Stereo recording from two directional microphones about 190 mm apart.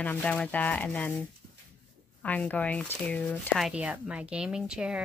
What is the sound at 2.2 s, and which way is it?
Speech, 10° left (ahead or behind).